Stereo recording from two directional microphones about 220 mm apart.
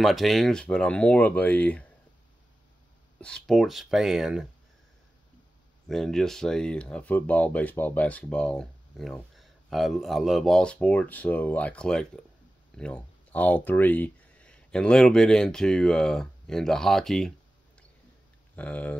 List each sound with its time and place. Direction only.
0.0 s speech: centre (ahead or behind)
3.2 s speech: 5° left (ahead or behind)
5.9 s speech: centre (ahead or behind)
18.6 s speech: 5° left (ahead or behind)